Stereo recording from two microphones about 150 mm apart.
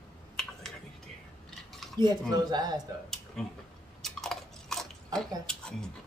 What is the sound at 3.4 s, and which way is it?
Speech, 5° left (ahead or behind).